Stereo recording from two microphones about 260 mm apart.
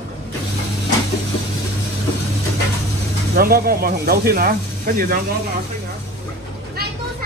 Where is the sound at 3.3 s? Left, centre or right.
Right.